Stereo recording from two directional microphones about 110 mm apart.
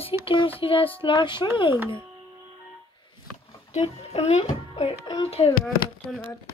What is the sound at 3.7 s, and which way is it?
A child's voice, 75° left (ahead or behind).